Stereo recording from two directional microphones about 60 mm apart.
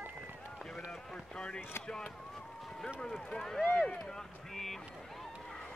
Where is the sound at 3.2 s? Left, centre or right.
Centre.